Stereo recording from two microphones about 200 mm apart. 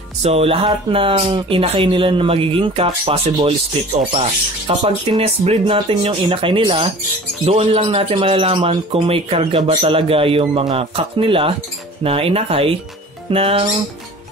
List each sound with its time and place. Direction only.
0.2 s a man's voice: 30° right (ahead or behind)